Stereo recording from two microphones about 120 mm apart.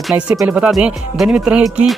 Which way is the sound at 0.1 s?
15° right (ahead or behind).